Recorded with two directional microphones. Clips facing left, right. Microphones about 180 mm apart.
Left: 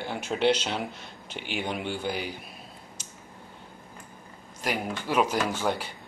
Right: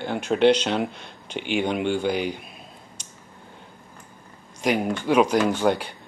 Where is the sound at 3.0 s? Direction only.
5° left (ahead or behind).